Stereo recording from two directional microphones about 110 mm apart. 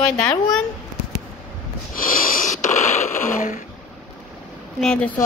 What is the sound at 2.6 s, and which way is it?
Radio, 90° left.